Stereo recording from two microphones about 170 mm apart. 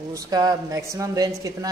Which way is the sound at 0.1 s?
25° right (ahead or behind).